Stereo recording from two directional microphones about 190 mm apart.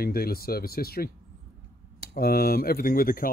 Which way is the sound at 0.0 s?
50° left (ahead or behind).